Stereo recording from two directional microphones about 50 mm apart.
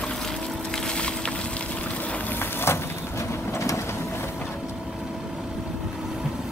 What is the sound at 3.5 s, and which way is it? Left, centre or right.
Vehicle, left.